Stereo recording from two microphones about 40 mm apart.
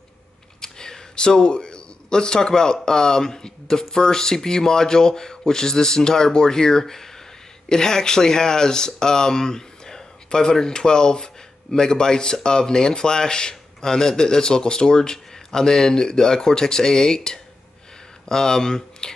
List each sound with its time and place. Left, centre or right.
0.6 s speech: centre